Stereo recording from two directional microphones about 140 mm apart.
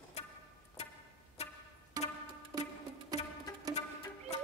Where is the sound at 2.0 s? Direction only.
25° right (ahead or behind).